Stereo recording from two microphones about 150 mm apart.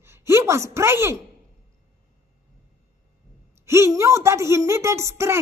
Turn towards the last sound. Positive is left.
turn(degrees=-20)  # may be behind; listen again after turning